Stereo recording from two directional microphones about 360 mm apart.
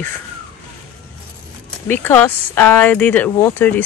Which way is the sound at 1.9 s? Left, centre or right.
Centre.